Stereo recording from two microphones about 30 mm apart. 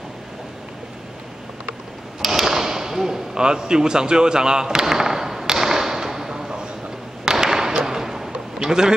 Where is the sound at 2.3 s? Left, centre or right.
Centre.